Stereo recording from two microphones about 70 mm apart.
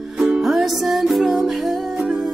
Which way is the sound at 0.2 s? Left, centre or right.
Centre.